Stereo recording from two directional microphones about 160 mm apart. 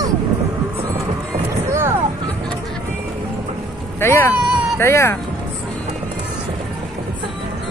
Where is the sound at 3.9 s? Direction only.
15° left (ahead or behind).